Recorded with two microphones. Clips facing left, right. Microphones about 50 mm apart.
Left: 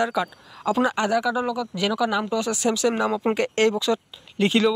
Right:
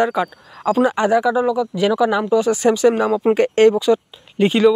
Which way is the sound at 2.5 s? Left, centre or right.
Right.